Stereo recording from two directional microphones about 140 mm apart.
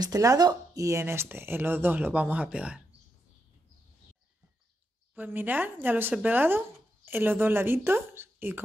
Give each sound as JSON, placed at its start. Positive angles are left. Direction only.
{"t": 0.0, "sound": "speech", "side_deg": -25}
{"t": 5.1, "sound": "speech", "side_deg": -15}